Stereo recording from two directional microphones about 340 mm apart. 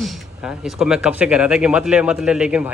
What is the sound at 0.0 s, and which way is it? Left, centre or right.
Speech, centre.